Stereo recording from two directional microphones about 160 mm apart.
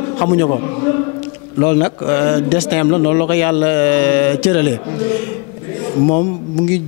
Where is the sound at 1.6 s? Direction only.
20° left (ahead or behind).